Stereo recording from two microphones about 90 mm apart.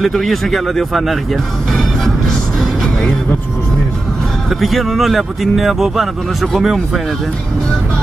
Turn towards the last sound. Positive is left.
turn(degrees=0)  # may be behind; listen again after turning